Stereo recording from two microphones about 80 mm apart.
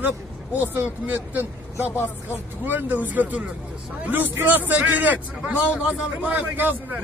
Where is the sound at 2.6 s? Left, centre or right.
Right.